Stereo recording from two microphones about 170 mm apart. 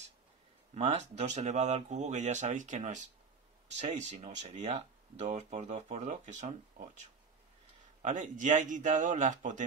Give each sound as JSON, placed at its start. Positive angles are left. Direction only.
{"t": 0.7, "sound": "speech", "side_deg": -40}